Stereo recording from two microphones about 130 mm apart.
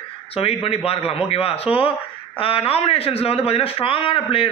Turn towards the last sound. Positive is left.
turn(degrees=45)  # may be behind; listen again after turning